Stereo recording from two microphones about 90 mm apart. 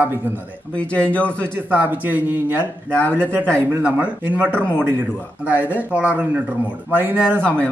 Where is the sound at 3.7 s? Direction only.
15° right (ahead or behind).